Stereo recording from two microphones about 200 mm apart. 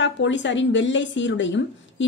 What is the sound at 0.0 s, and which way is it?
A woman's voice, 65° left (ahead or behind).